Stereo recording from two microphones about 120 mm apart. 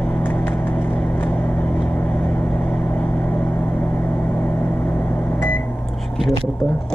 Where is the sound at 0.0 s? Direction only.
5° left (ahead or behind).